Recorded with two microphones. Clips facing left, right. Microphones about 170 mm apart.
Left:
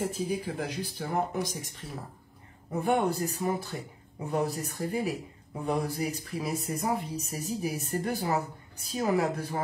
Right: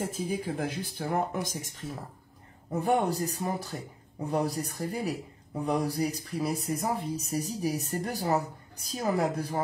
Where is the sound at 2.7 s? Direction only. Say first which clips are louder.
Even; 35° right (ahead or behind).